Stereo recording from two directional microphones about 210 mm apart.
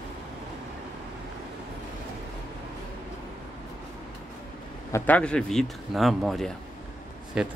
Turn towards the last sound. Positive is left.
turn(degrees=-5)  # may be behind; listen again after turning